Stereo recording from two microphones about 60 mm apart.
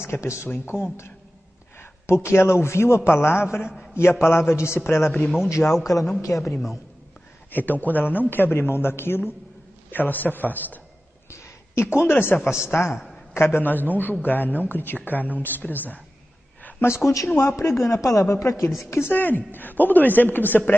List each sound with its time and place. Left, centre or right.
0.0 s a man's voice: left
1.8 s a man's voice: left
5.2 s a man's voice: centre
5.9 s a woman's voice: left
7.5 s speech: left
11.2 s a man's voice: left
12.5 s a man's voice: centre
13.3 s speech: left
16.8 s a man's voice: left
18.3 s a man's voice: left
19.1 s speech: left